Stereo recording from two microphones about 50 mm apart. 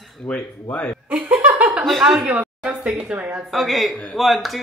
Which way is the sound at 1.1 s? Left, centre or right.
Right.